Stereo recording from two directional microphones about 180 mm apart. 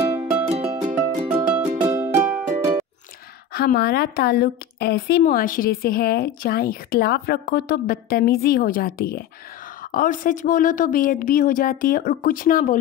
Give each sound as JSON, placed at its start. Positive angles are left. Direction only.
{"t": 0.6, "sound": "music", "side_deg": -5}
{"t": 3.5, "sound": "a woman's voice", "side_deg": 60}
{"t": 5.2, "sound": "a woman's voice", "side_deg": 50}
{"t": 9.9, "sound": "speech", "side_deg": 50}